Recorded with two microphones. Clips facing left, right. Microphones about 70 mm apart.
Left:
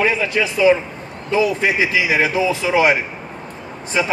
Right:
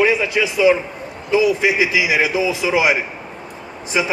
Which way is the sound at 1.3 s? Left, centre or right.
Centre.